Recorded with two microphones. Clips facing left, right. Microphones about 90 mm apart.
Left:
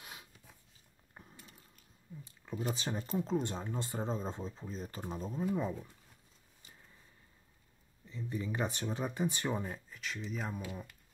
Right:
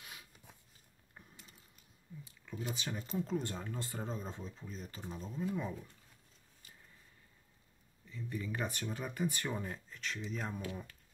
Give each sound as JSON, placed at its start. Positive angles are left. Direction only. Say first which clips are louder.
{"t": 0.0, "sound": "a sound", "louder": "left 2 dB", "side_deg": 25}
{"t": 2.2, "sound": "speech", "louder": "left 5 dB", "side_deg": 30}
{"t": 5.4, "sound": "speech", "louder": "left 3 dB", "side_deg": 20}
{"t": 8.1, "sound": "speech", "louder": "left 2 dB", "side_deg": 25}